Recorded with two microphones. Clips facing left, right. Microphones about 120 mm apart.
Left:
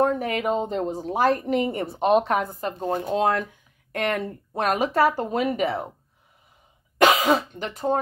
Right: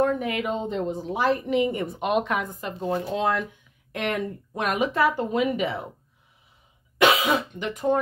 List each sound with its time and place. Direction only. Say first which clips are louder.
0.0 s a woman's voice: left 1 dB; 40° left (ahead or behind)
7.0 s speech: left 2 dB; 40° left (ahead or behind)